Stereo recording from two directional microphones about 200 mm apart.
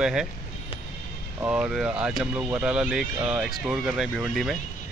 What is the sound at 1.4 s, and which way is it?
Speech, 5° right (ahead or behind).